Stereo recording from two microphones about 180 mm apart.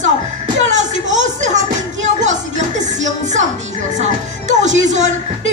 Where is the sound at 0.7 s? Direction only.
40° right (ahead or behind).